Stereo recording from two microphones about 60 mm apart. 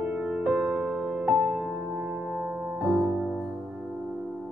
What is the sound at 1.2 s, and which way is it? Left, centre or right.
Music, right.